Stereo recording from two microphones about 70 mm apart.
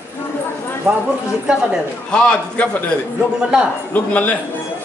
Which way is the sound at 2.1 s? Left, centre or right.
Centre.